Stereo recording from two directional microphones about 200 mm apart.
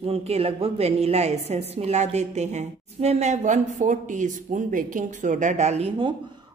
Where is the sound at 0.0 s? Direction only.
30° right (ahead or behind).